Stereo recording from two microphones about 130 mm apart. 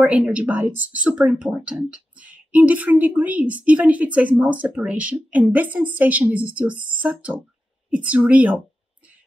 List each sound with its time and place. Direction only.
0.0 s speech: 10° right (ahead or behind)